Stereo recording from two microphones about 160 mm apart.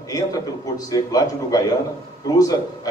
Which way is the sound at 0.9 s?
20° left (ahead or behind).